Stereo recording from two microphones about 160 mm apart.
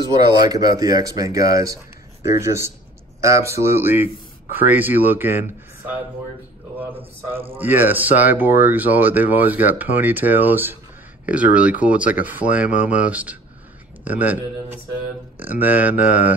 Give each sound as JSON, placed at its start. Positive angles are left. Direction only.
{"t": 0.5, "sound": "speech", "side_deg": -25}
{"t": 7.5, "sound": "speech", "side_deg": -10}